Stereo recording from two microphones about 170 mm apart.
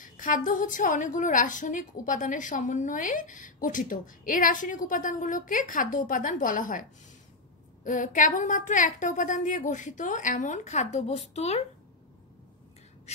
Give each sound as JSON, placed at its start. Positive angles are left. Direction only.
{"t": 0.0, "sound": "a woman's voice", "side_deg": 50}